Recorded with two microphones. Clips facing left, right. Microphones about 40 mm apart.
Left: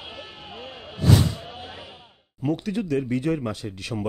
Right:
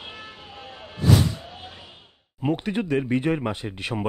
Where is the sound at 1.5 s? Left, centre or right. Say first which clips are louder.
Left 3 dB; centre.